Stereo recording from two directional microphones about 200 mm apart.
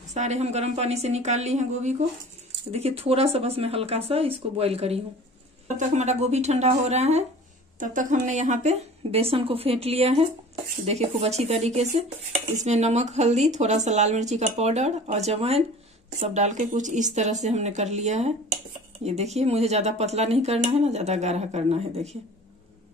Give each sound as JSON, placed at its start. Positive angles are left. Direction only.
{"t": 0.1, "sound": "speech", "side_deg": -35}